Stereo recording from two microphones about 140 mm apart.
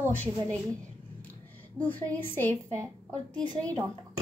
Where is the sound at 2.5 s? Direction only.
20° right (ahead or behind).